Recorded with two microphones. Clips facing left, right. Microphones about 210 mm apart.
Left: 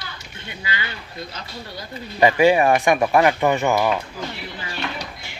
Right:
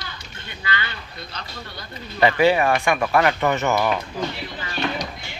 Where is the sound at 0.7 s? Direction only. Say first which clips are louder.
Right 2 dB; 10° left (ahead or behind).